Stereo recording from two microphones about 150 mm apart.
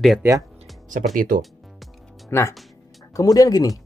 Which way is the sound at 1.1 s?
70° right (ahead or behind).